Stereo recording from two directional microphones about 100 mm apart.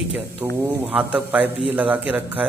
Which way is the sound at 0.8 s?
5° right (ahead or behind).